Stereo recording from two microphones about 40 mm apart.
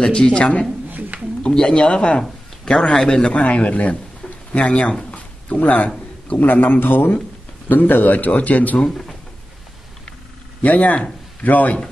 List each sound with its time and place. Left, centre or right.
0.0 s speech: centre
0.8 s a sound: right
1.4 s a man's voice: centre; by 4.9 s left
5.1 s a sound: left
6.2 s a man's voice: left
7.6 s a man's voice: left
8.7 s speech: centre
10.6 s speech: left